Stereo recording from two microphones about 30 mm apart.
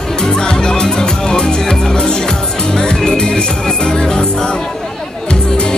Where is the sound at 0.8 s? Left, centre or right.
Left.